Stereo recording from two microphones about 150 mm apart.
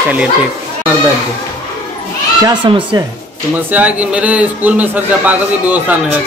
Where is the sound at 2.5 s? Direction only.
25° right (ahead or behind).